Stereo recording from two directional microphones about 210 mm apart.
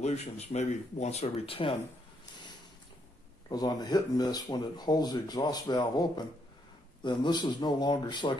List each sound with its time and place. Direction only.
0.0 s speech: 30° left (ahead or behind)
2.3 s boat: 20° left (ahead or behind)
3.4 s speech: 20° left (ahead or behind)